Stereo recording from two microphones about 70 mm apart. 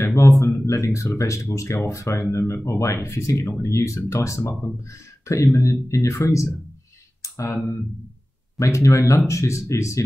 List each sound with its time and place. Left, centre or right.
0.0 s a sound: left
0.7 s speech: left
7.2 s clicking: left
8.5 s speech: left